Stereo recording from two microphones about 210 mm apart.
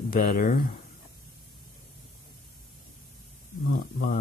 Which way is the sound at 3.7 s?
40° left (ahead or behind).